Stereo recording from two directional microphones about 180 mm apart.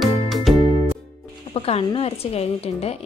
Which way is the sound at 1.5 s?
30° left (ahead or behind).